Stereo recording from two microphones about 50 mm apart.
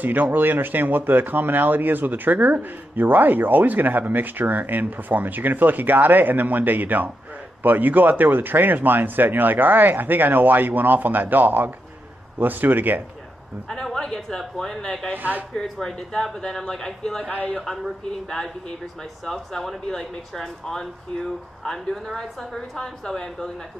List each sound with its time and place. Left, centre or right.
0.0 s speech: right
13.7 s speech: centre
15.1 s speech: right
15.5 s speech: centre
19.2 s speech: centre